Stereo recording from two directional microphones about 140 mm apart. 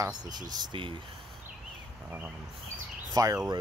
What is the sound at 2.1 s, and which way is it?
Speech, 15° right (ahead or behind).